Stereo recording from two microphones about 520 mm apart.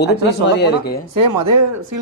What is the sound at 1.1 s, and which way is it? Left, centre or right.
Speech, right.